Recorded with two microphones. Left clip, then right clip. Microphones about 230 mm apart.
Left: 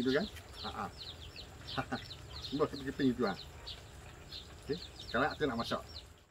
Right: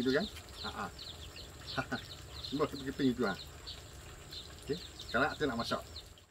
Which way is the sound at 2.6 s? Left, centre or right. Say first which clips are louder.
Even; centre.